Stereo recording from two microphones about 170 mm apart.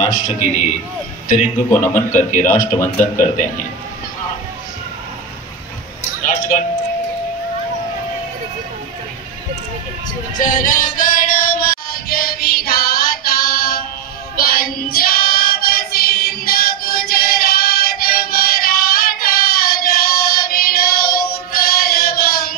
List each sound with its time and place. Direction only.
0.0 s a man's voice: 40° left (ahead or behind)
1.7 s speech: 10° left (ahead or behind)
2.1 s a man's voice: 50° left (ahead or behind)
2.7 s speech: 15° left (ahead or behind)
10.4 s music: 50° left (ahead or behind)
14.3 s child singing: 60° left (ahead or behind)